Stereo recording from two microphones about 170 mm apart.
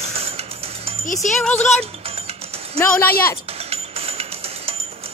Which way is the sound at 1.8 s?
35° right (ahead or behind).